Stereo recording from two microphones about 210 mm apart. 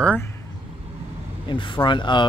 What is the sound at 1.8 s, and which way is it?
Speech, 20° left (ahead or behind).